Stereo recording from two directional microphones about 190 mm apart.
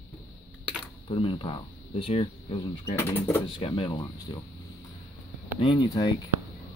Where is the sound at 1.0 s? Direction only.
30° left (ahead or behind).